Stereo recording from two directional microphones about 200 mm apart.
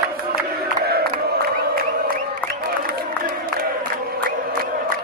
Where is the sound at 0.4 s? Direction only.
50° right (ahead or behind).